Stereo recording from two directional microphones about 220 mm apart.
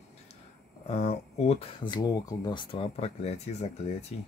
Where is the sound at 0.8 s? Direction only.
30° left (ahead or behind).